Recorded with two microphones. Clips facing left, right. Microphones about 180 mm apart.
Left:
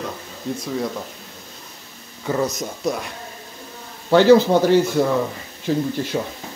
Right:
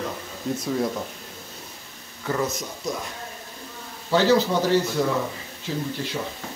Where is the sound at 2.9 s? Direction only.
65° left (ahead or behind).